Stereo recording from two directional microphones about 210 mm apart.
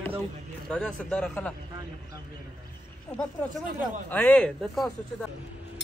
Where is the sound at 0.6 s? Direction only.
5° left (ahead or behind).